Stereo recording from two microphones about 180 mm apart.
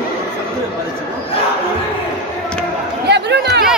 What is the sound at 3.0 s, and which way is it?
Chatter, 70° right (ahead or behind).